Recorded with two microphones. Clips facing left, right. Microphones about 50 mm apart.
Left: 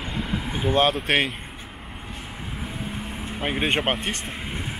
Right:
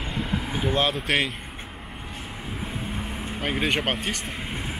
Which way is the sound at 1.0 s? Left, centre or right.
Left.